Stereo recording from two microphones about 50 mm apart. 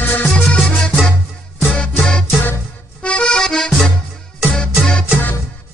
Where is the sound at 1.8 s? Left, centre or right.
Left.